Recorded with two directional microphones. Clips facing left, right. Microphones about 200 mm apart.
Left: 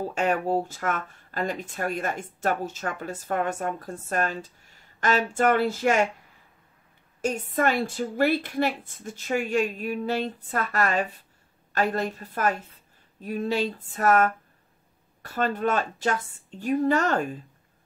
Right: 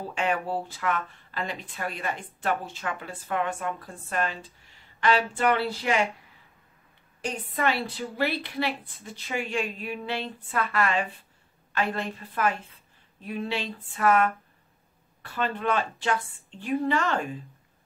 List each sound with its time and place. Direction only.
0.0 s speech: 40° left (ahead or behind)
7.2 s speech: 45° left (ahead or behind)
11.7 s a sound: 40° left (ahead or behind)
15.2 s speech: 45° left (ahead or behind)